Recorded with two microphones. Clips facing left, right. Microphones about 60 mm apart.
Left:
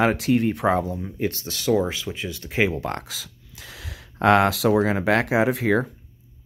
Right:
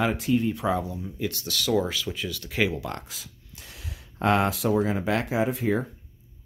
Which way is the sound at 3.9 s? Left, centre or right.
Left.